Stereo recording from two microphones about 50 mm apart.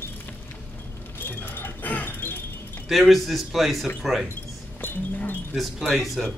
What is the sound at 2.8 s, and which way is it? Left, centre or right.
A man's voice, centre.